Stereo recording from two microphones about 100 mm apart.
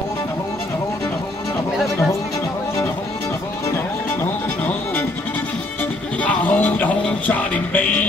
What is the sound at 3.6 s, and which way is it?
Music, 25° left (ahead or behind).